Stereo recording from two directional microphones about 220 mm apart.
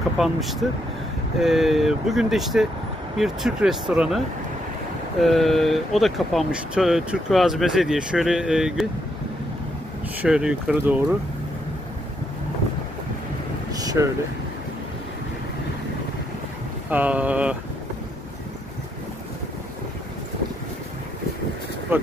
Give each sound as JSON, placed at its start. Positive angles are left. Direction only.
{"t": 0.2, "sound": "speech", "side_deg": 0}
{"t": 5.2, "sound": "speech", "side_deg": 0}
{"t": 10.2, "sound": "speech", "side_deg": -5}
{"t": 13.7, "sound": "a sound", "side_deg": -15}
{"t": 16.9, "sound": "speech", "side_deg": -5}
{"t": 21.9, "sound": "speech", "side_deg": -10}